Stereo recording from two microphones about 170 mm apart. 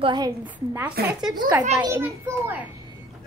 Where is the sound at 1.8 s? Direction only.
15° right (ahead or behind).